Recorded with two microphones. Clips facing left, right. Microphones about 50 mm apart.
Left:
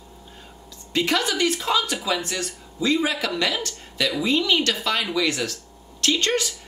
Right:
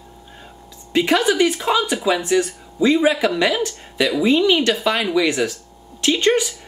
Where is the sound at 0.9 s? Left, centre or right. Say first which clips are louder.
Right 6 dB; centre.